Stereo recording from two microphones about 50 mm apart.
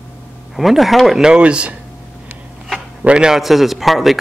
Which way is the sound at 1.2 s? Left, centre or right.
Centre.